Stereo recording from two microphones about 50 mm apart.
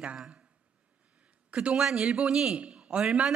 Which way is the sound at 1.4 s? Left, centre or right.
Right.